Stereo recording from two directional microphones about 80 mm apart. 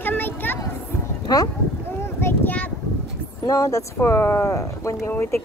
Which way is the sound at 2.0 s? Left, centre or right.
Left.